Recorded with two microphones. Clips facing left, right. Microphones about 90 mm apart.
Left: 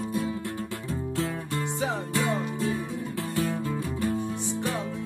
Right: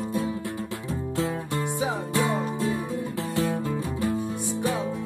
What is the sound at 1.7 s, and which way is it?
Music, 15° right (ahead or behind).